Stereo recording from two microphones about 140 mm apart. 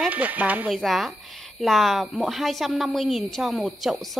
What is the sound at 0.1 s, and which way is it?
Speech, 10° right (ahead or behind).